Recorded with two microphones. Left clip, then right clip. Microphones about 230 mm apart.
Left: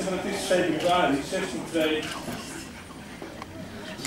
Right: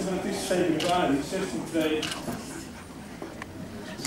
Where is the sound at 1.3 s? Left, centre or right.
Centre.